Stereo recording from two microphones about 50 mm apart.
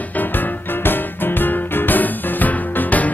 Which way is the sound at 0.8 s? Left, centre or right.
Left.